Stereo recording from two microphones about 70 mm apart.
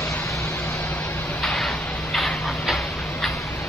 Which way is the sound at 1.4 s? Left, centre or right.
Centre.